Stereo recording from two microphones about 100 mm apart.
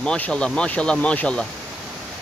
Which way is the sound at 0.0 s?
10° left (ahead or behind).